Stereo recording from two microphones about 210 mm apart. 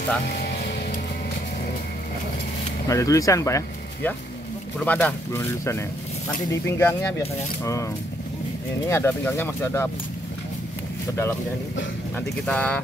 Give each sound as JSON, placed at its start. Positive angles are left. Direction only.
{"t": 2.9, "sound": "speech", "side_deg": 15}
{"t": 12.4, "sound": "speech", "side_deg": 5}